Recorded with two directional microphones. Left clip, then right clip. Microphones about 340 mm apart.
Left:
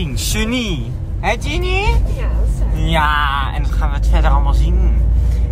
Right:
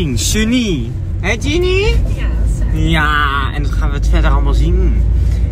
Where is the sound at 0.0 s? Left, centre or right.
Centre.